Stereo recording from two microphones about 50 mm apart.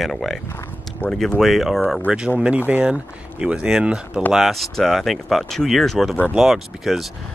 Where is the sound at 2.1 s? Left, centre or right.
Right.